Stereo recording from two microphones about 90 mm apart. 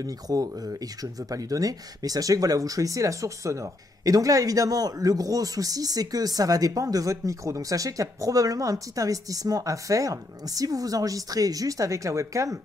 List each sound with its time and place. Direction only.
0.0 s speech: 40° right (ahead or behind)